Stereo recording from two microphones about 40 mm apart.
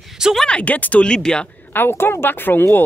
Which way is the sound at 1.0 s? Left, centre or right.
Left.